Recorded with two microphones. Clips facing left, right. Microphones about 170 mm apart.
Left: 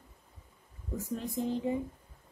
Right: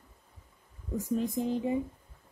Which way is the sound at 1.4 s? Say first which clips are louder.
Right 2 dB; 15° right (ahead or behind).